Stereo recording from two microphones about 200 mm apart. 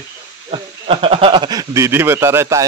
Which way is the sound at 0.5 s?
30° right (ahead or behind).